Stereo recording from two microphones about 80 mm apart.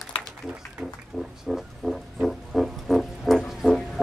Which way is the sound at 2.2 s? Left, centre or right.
Centre.